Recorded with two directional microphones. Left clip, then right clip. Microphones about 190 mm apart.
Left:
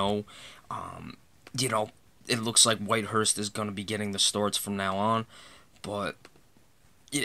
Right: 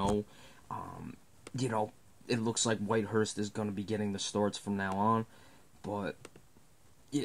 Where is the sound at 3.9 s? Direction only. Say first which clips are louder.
Left 8 dB; 25° left (ahead or behind).